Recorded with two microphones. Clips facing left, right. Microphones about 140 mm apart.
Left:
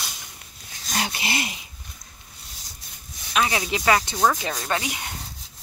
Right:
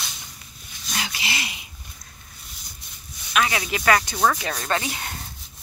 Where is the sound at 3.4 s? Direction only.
20° left (ahead or behind).